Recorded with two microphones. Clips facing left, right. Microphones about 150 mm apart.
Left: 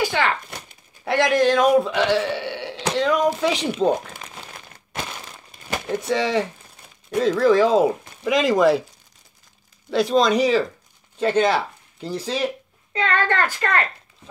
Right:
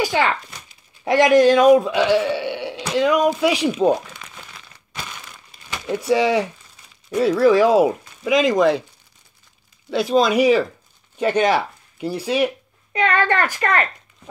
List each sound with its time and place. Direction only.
0.0 s a sound: 15° right (ahead or behind)
1.0 s speech: 15° right (ahead or behind)
4.2 s crumpling: 45° left (ahead or behind)
5.9 s speech: 10° right (ahead or behind)
8.2 s speech: centre (ahead or behind)
9.8 s a child's voice: centre (ahead or behind); by 14.3 s 15° right (ahead or behind)